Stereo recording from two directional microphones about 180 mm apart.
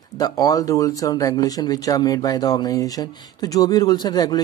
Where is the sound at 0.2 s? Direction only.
20° left (ahead or behind).